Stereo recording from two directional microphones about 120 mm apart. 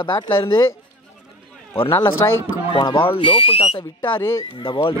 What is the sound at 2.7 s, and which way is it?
Speech, 45° left (ahead or behind).